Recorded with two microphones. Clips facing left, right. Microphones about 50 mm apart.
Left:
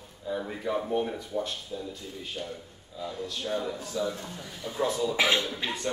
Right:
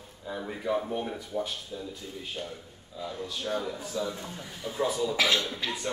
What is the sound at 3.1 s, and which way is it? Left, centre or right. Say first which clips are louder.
Speech: even; centre.